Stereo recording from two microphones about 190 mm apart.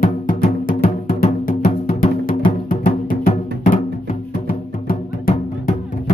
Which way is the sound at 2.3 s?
35° left (ahead or behind).